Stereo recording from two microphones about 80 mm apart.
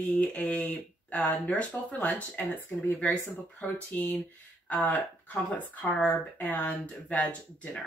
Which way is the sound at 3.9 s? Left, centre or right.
Left.